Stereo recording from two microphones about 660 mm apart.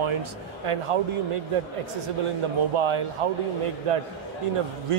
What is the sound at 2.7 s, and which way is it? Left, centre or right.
Speech, right.